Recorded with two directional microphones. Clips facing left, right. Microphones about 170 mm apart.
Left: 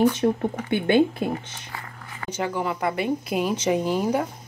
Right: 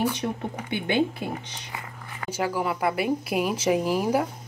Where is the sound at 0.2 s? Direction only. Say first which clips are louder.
Left 8 dB; 40° left (ahead or behind).